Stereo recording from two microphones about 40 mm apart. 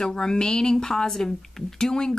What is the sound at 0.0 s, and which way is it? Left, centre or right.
Speech, centre.